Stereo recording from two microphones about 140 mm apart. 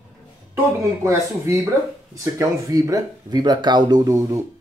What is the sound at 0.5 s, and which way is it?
Speech, 20° right (ahead or behind).